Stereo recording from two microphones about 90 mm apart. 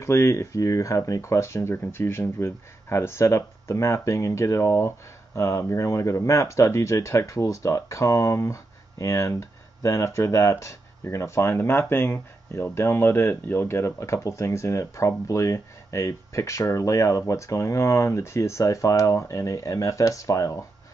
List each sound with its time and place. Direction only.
0.0 s speech: 30° left (ahead or behind)